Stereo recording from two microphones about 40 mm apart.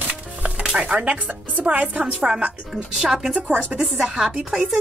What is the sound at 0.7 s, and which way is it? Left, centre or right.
Speech, right.